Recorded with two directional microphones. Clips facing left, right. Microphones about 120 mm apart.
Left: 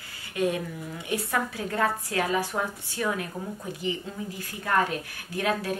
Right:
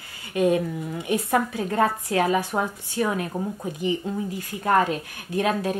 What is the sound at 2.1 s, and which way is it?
Speech, 25° right (ahead or behind).